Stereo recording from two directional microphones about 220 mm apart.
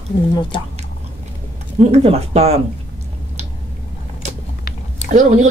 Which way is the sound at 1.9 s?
30° right (ahead or behind).